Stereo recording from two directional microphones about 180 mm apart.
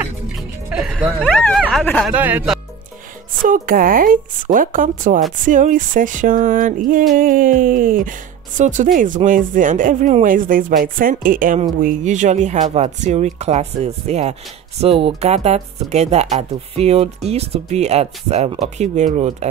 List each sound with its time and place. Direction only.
0.7 s music: 5° right (ahead or behind)
1.2 s a sound: 5° left (ahead or behind)
2.1 s speech: 10° right (ahead or behind)
3.4 s speech: 50° right (ahead or behind)